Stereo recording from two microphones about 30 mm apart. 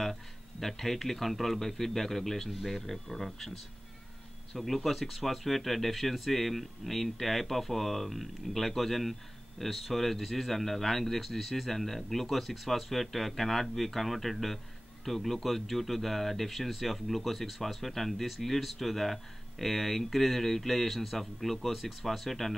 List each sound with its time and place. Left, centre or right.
0.0 s speech: centre
4.6 s speech: centre